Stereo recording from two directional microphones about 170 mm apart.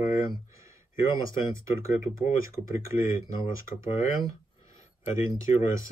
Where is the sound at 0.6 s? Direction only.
20° right (ahead or behind).